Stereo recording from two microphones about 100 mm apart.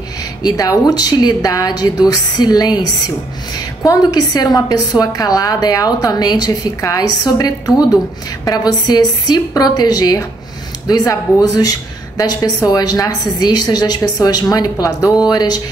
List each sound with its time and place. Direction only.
0.4 s a woman's voice: 40° left (ahead or behind)